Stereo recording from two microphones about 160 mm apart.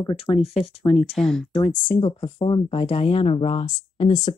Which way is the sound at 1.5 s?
55° left (ahead or behind).